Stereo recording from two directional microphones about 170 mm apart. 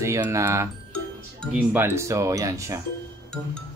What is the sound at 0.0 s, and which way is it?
Speech, 15° right (ahead or behind).